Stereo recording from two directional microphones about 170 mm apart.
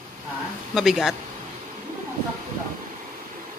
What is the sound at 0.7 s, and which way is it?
Speech, centre (ahead or behind).